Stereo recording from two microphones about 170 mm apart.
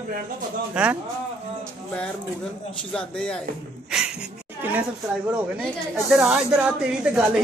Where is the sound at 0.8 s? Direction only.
5° right (ahead or behind).